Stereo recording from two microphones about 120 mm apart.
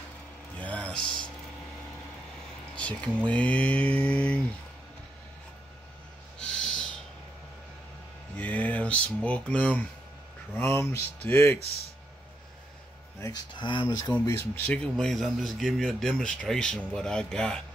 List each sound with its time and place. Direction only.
0.6 s music: 10° left (ahead or behind)
2.7 s mantra: 10° left (ahead or behind)
6.4 s owl: 5° left (ahead or behind)
8.4 s speech: 15° left (ahead or behind)
13.2 s speech: 35° left (ahead or behind)
14.2 s speech: 20° left (ahead or behind); by 17.6 s 5° left (ahead or behind)